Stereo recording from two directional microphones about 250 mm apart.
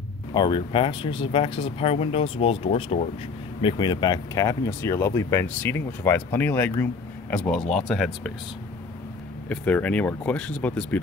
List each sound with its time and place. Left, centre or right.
0.3 s speech: centre
9.5 s speech: centre